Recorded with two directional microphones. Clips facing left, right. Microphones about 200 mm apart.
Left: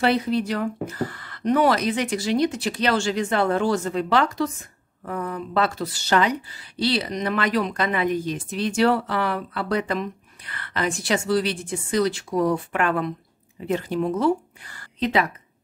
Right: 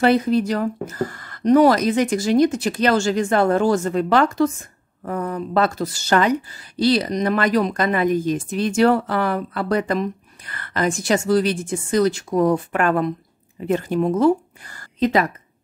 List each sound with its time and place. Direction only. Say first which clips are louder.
0.0 s a woman's voice: right 5 dB; 45° right (ahead or behind)